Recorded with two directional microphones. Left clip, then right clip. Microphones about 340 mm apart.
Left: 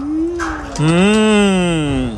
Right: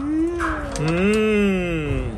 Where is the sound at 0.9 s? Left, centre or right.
Left.